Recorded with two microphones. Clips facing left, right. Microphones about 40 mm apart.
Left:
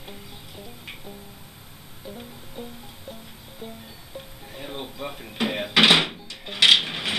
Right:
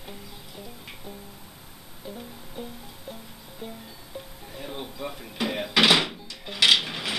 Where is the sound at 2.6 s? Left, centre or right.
Centre.